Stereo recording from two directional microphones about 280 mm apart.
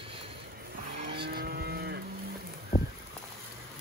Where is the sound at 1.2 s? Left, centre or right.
Right.